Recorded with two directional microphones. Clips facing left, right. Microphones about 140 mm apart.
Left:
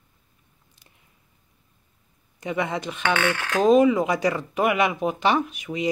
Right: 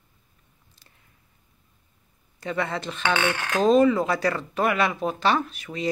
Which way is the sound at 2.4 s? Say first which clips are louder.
Left 1 dB; 15° left (ahead or behind).